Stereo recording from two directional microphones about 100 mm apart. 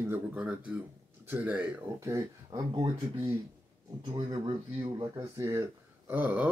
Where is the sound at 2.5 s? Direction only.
45° right (ahead or behind).